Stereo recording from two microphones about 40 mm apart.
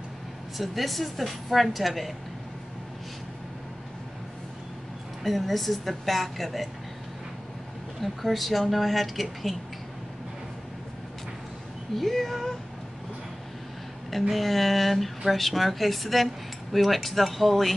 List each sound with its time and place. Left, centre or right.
0.6 s speech: centre
5.2 s speech: centre
8.0 s speech: centre
12.0 s speech: centre
14.1 s speech: centre